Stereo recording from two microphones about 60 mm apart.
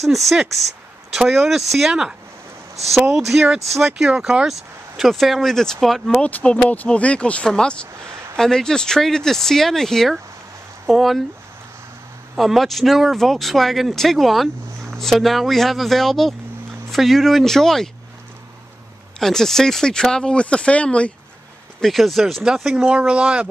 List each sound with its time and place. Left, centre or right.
0.1 s speech: centre
3.1 s speech: right
4.5 s speech: centre
6.1 s speech: centre
12.4 s speech: centre
19.1 s speech: centre
21.8 s speech: centre
22.8 s speech: centre